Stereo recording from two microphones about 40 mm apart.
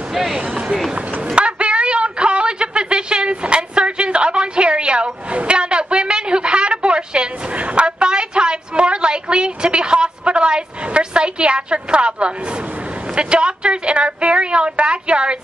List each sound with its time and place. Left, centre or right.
0.1 s speech: centre
1.2 s a sound: right
13.1 s a woman's voice: right